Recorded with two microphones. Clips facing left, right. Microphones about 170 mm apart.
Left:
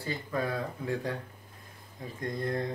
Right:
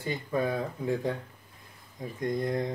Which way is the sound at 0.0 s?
20° right (ahead or behind).